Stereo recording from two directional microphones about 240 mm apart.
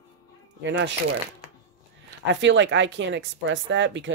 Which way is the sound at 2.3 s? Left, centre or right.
Right.